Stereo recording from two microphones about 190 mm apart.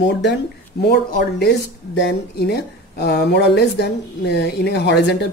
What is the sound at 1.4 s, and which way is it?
Speech, 65° left (ahead or behind).